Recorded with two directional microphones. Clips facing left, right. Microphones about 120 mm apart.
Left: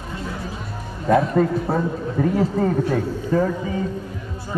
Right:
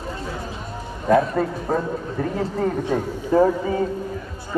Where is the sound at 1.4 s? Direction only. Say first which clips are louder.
Left 4 dB; 5° right (ahead or behind).